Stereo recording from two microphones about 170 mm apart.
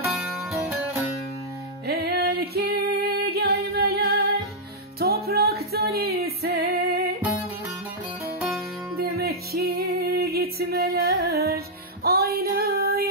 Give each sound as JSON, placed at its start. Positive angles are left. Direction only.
{"t": 0.2, "sound": "music", "side_deg": -10}
{"t": 1.9, "sound": "music", "side_deg": -70}
{"t": 8.9, "sound": "music", "side_deg": -65}